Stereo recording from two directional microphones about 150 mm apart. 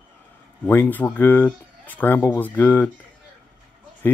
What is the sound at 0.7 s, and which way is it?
Speech, 10° left (ahead or behind).